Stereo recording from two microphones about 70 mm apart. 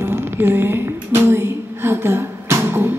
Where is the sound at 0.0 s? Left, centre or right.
Right.